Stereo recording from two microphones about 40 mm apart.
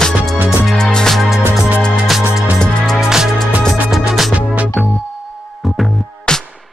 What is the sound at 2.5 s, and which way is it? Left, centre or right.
Music, centre.